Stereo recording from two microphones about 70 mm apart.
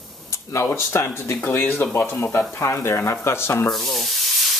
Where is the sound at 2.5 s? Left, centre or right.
Left.